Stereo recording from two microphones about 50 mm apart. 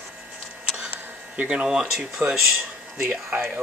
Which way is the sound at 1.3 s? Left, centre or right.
Right.